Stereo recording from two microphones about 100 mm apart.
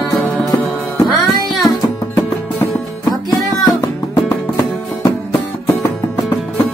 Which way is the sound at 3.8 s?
30° left (ahead or behind).